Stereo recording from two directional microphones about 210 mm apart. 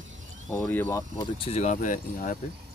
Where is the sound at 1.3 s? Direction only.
30° left (ahead or behind).